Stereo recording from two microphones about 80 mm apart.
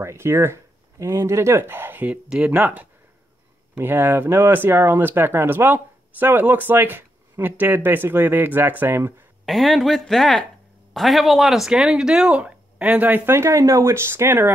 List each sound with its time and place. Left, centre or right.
0.0 s speech: right
2.2 s speech: centre
9.5 s speech: centre; by 14.5 s right